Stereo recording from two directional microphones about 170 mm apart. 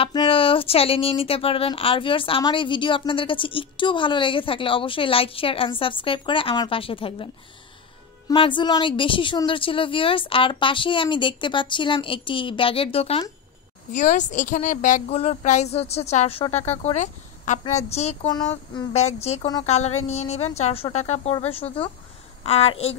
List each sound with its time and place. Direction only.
0.0 s speech: 30° left (ahead or behind)
8.3 s a woman's voice: 30° left (ahead or behind)
13.9 s a woman's voice: 45° left (ahead or behind)